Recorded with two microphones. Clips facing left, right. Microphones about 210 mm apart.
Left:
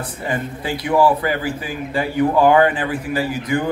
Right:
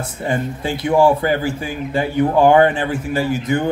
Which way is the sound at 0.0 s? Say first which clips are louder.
Right 3 dB; 25° right (ahead or behind).